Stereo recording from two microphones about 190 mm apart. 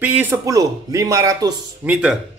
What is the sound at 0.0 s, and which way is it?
Speech, 10° right (ahead or behind).